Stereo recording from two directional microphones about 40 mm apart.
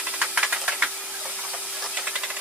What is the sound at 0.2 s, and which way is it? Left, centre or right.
Engine knocking, right.